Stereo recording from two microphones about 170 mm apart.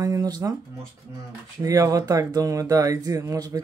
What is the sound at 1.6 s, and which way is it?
Speech, 20° right (ahead or behind).